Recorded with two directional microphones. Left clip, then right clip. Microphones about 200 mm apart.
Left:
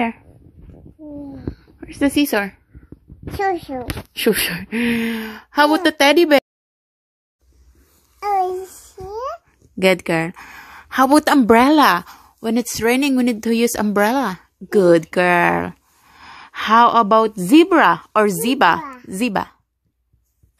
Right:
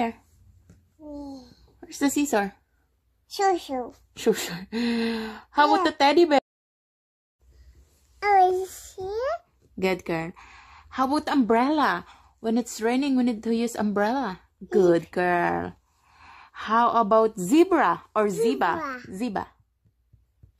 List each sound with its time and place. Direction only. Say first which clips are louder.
1.8 s a woman's voice: left 7 dB; 10° left (ahead or behind); by 3.8 s 5° right (ahead or behind)
3.8 s a woman's voice: left 6 dB; 15° left (ahead or behind)
4.7 s a woman's voice: left 5 dB; 10° left (ahead or behind)
5.2 s a woman's voice: left 5 dB; 20° left (ahead or behind)
8.5 s child singing: even; 10° left (ahead or behind)
9.8 s a woman's voice: left 10 dB; 25° left (ahead or behind)
18.8 s a sound: left 2 dB; 10° right (ahead or behind)
19.1 s speech: left 14 dB; 25° left (ahead or behind)